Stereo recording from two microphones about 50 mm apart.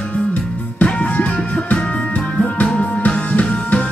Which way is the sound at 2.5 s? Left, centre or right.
Left.